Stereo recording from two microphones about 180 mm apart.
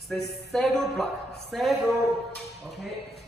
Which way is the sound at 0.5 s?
5° left (ahead or behind).